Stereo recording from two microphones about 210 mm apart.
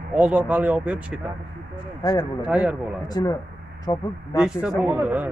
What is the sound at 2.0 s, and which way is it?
Speech, 20° left (ahead or behind).